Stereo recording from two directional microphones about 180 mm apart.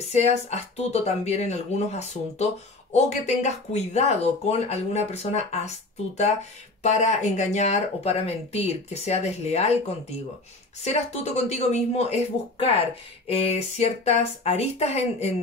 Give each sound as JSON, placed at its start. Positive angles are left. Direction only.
{"t": 0.1, "sound": "speech", "side_deg": 35}
{"t": 10.8, "sound": "speech", "side_deg": 35}